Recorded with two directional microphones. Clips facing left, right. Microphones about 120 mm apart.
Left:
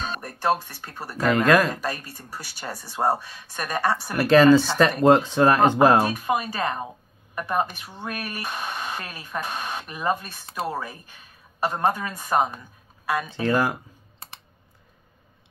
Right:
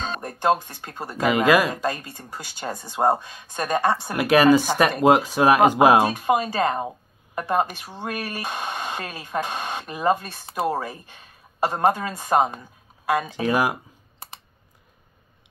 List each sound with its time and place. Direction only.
0.0 s speech: 25° right (ahead or behind)
1.2 s speech: 5° right (ahead or behind)
1.8 s speech: 20° right (ahead or behind)
6.0 s speech: 25° right (ahead or behind)
13.3 s speech: 10° right (ahead or behind)